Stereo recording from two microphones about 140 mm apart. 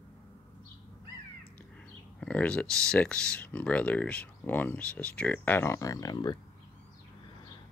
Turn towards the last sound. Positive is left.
turn(degrees=30)  # may be behind; listen again after turning